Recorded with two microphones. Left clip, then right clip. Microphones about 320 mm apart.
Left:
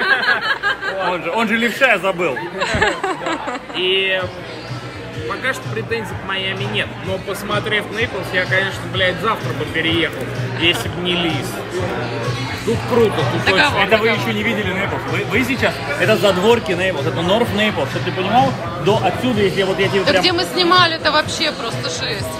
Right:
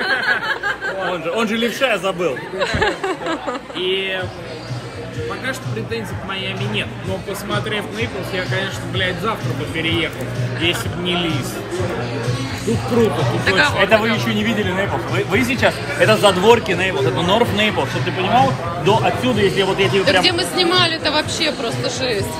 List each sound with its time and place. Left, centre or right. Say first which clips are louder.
0.0 s a sound: left 2 dB; left
1.1 s a man's voice: left 2 dB; centre
3.8 s speech: left 4 dB; centre
5.4 s speech: left 3 dB; centre
9.8 s speech: left 2 dB; centre
13.4 s a man's voice: left 1 dB; centre
15.5 s speech: right 1 dB; centre
16.3 s a man's voice: right 1 dB; centre